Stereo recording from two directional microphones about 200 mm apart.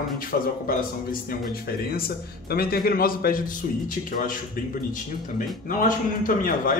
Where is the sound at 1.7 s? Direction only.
50° left (ahead or behind).